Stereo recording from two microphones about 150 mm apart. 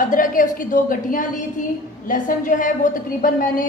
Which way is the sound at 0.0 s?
65° left (ahead or behind).